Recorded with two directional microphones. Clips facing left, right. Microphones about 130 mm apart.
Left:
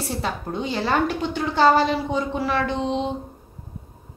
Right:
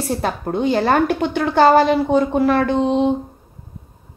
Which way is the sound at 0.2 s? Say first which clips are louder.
Right 7 dB; 55° right (ahead or behind).